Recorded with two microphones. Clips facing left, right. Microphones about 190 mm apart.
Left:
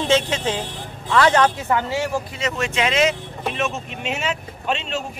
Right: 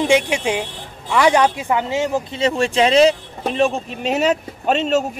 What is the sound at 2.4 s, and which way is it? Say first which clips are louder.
Speech: right 8 dB; 30° right (ahead or behind).